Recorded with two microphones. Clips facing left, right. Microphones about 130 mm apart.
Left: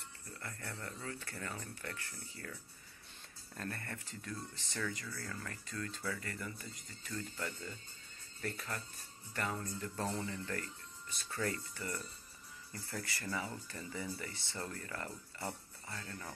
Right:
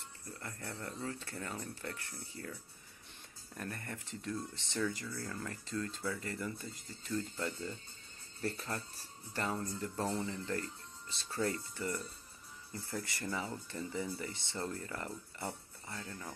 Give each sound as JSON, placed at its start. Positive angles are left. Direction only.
{"t": 0.3, "sound": "speech", "side_deg": -20}
{"t": 3.5, "sound": "speech", "side_deg": -15}